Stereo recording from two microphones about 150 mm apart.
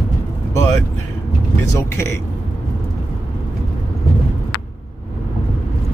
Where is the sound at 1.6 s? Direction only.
20° left (ahead or behind).